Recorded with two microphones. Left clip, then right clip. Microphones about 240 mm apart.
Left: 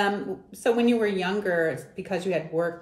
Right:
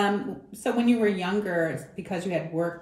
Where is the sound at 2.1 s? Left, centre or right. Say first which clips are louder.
Left 2 dB; centre.